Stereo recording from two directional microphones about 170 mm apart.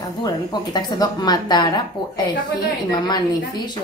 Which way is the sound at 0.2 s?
25° left (ahead or behind).